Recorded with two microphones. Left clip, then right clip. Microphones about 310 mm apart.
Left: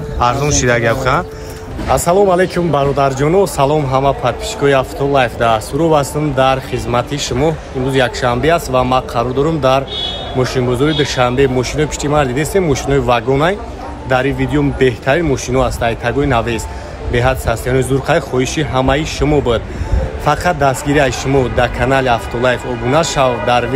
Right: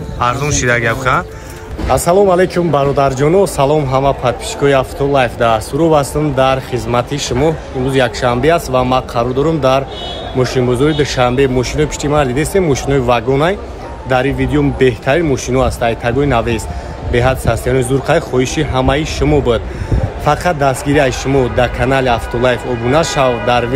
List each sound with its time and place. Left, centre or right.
0.2 s speech: centre